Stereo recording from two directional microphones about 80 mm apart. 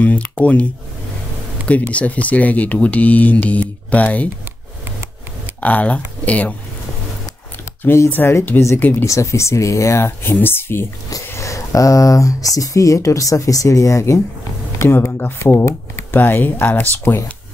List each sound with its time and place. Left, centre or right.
0.0 s speech: centre
1.7 s speech: centre
5.6 s speech: centre
7.8 s speech: left
9.0 s speech: left
11.3 s speech: left
16.2 s speech: left